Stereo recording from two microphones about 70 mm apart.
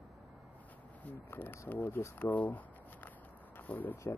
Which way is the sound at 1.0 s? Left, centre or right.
Left.